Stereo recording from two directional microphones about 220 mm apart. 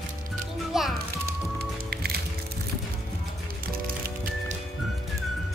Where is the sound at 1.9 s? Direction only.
45° right (ahead or behind).